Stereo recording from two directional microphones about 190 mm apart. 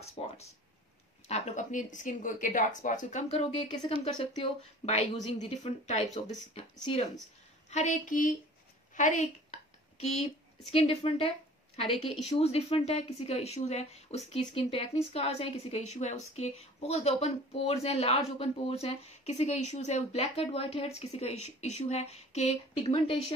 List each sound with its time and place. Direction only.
0.2 s speech: 30° left (ahead or behind)
10.7 s a woman's voice: 30° left (ahead or behind)